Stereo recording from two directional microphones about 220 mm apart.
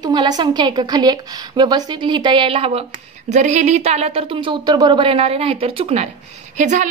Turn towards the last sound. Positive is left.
turn(degrees=-35)  # may be behind; listen again after turning